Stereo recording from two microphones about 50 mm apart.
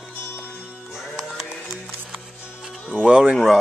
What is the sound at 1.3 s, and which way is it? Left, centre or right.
Music, centre.